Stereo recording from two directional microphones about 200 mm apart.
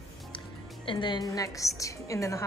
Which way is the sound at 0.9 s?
20° left (ahead or behind).